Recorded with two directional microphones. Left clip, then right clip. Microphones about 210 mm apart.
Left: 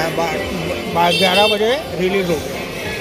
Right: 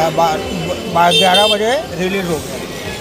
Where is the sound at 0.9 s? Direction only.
40° right (ahead or behind).